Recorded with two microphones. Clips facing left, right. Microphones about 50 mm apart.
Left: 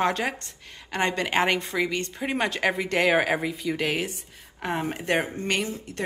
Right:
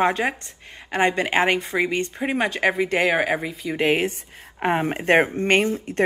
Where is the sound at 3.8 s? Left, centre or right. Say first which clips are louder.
Right 7 dB; right.